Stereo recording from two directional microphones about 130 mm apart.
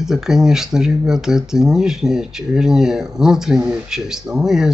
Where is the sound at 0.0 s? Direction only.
5° right (ahead or behind).